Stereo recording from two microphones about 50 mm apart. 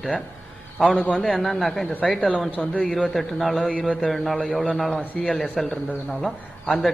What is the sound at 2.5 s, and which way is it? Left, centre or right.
Speech, left.